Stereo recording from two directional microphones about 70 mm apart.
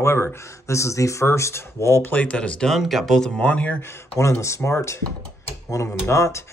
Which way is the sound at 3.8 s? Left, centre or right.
Left.